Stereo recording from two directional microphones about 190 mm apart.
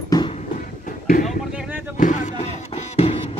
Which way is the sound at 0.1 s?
25° left (ahead or behind).